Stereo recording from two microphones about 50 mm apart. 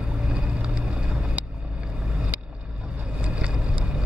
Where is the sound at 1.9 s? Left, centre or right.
Centre.